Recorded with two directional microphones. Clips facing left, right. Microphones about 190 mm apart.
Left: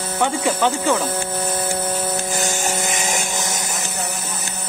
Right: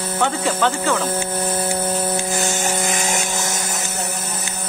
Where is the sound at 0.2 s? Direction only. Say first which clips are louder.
Left 1 dB; 15° left (ahead or behind).